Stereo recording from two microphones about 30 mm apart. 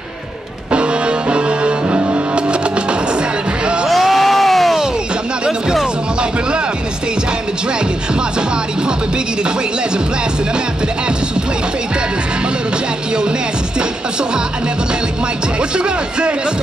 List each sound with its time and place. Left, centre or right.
0.7 s music: right
3.9 s crowd: centre
15.8 s speech: right